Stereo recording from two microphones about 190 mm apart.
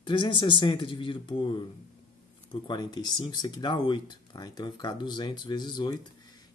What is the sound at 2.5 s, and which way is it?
Speech, 20° left (ahead or behind).